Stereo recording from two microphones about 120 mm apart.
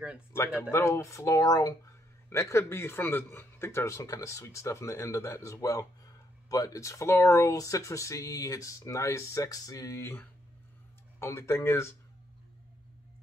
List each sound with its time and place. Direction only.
0.6 s speech: 20° left (ahead or behind)